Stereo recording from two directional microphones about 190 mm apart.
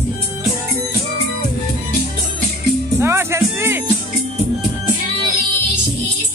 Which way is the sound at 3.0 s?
15° right (ahead or behind).